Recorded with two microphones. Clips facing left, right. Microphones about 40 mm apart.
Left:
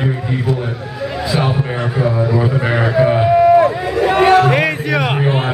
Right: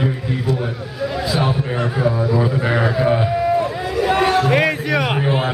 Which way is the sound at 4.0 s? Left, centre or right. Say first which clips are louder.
Left 4 dB; centre.